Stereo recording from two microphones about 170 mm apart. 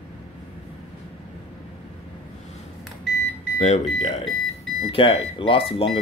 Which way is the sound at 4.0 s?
40° left (ahead or behind).